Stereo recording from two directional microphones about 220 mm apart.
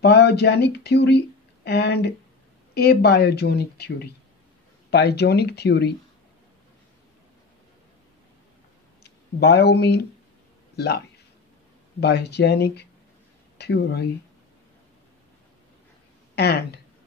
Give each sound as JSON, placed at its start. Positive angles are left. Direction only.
{"t": 0.0, "sound": "speech", "side_deg": 45}
{"t": 9.0, "sound": "speech", "side_deg": 50}
{"t": 16.3, "sound": "speech", "side_deg": 50}